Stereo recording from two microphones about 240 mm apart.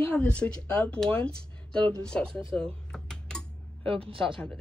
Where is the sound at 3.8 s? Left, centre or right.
Right.